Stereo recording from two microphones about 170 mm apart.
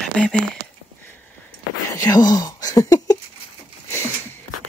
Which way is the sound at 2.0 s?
25° left (ahead or behind).